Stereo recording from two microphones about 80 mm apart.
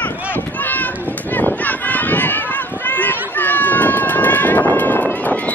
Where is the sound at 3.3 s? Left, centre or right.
Left.